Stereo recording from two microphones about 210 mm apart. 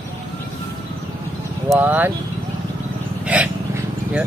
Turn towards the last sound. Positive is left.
turn(degrees=-5)  # may be behind; listen again after turning